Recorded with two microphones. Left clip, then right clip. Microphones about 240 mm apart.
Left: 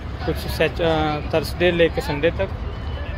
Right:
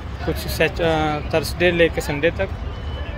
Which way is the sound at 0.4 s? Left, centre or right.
Centre.